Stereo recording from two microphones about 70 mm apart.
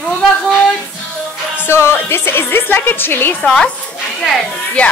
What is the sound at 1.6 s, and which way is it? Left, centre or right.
A woman's voice, left.